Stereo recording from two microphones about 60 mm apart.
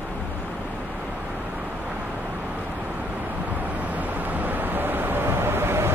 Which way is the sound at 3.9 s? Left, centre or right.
Right.